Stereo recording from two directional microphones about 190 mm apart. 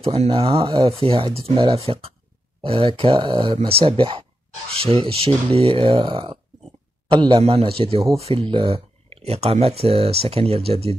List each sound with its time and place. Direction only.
0.2 s speech: 30° right (ahead or behind)